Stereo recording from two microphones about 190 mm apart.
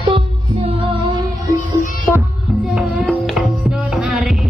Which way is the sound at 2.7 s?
5° right (ahead or behind).